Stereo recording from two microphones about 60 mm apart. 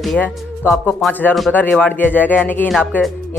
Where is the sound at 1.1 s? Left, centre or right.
Left.